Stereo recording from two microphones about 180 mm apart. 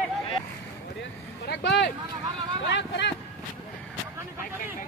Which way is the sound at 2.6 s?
85° left.